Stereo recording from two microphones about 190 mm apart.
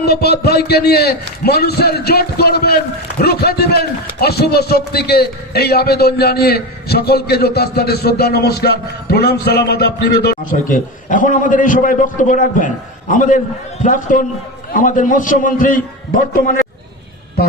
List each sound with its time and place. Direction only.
0.0 s a man's voice: 55° left (ahead or behind)